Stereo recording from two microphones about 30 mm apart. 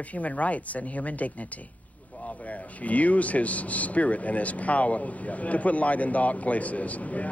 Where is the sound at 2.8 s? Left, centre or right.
Left.